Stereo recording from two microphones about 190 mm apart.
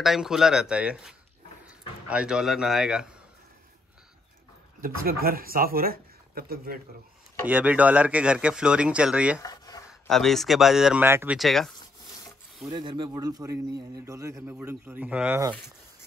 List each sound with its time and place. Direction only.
0.0 s speech: centre (ahead or behind)
4.7 s speech: 50° right (ahead or behind)
7.4 s speech: 10° right (ahead or behind)
9.4 s a sound: 20° left (ahead or behind)
9.8 s speech: centre (ahead or behind)
11.3 s speech: centre (ahead or behind)
12.6 s a man's voice: 20° right (ahead or behind)